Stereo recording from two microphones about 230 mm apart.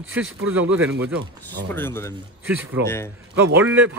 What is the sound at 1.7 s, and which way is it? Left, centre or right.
Speech, centre.